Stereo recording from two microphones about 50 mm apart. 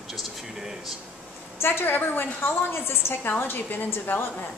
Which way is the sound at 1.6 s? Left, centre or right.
Left.